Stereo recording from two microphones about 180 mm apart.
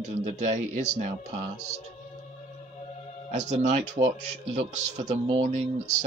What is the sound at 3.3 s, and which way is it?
A man's voice, 40° right (ahead or behind).